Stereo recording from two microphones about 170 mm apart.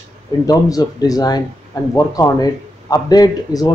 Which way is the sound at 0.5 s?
20° left (ahead or behind).